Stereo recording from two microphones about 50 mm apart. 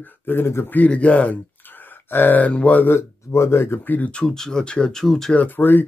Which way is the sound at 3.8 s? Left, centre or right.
Left.